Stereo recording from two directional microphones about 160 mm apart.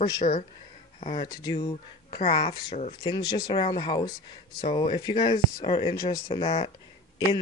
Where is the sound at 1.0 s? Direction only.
35° left (ahead or behind).